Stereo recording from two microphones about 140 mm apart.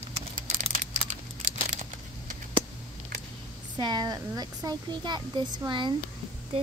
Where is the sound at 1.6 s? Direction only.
65° right (ahead or behind).